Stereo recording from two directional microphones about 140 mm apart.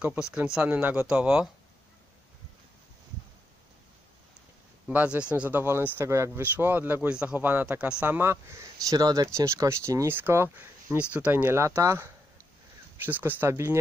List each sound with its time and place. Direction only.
0.0 s speech: 10° right (ahead or behind)
4.8 s speech: 10° right (ahead or behind)